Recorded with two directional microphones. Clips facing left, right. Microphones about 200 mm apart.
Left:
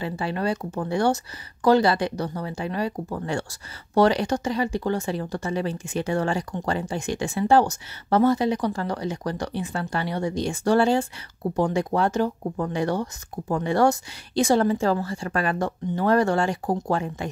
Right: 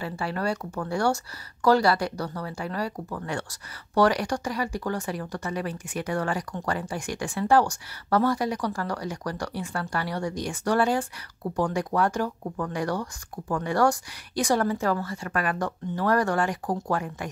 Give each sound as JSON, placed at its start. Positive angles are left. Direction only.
{"t": 0.0, "sound": "speech", "side_deg": 20}